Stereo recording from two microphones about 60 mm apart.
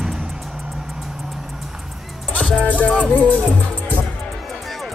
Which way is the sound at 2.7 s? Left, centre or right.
Left.